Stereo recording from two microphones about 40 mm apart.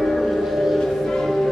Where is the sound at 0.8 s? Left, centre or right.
Centre.